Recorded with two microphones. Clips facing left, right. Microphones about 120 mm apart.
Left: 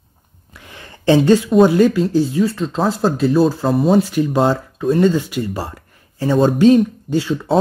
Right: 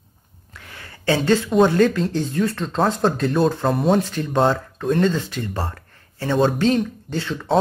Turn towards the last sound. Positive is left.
turn(degrees=10)  # may be behind; listen again after turning